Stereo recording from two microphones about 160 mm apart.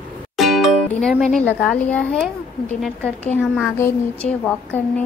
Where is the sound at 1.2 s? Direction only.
5° left (ahead or behind).